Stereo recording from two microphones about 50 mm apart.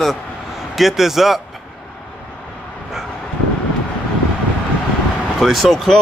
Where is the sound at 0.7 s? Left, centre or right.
Centre.